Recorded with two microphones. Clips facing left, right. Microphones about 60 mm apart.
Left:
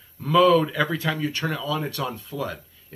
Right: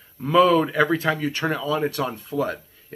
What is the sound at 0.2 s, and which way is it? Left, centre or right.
Speech, right.